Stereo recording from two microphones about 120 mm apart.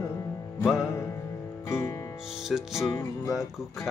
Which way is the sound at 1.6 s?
25° left (ahead or behind).